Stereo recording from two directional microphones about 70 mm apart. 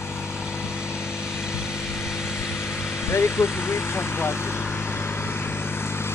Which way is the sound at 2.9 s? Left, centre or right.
Left.